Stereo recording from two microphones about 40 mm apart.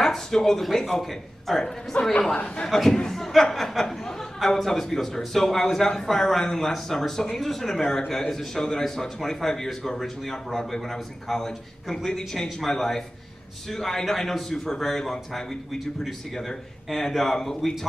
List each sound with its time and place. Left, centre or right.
0.0 s a man's voice: centre
2.7 s speech: centre